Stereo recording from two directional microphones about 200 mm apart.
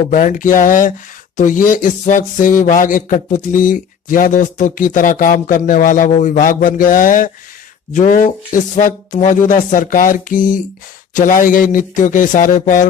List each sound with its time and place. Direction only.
0.1 s speech: 40° left (ahead or behind)